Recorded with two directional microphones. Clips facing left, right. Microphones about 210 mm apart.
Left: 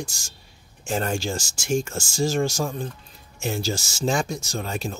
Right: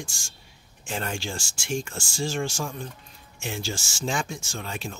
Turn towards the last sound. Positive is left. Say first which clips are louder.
# left 5 dB
turn(degrees=40)  # may be behind; listen again after turning